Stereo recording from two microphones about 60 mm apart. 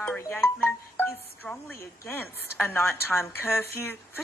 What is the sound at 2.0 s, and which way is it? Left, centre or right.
A woman's voice, left.